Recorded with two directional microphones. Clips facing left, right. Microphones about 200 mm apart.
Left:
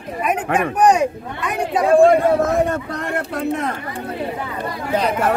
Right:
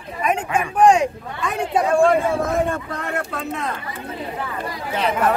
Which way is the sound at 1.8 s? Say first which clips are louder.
Left 6 dB; 35° left (ahead or behind).